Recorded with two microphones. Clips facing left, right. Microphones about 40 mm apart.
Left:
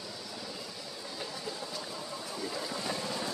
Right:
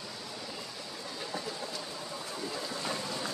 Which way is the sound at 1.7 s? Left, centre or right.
Centre.